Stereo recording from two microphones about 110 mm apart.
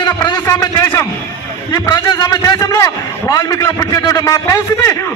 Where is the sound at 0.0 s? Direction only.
40° left (ahead or behind).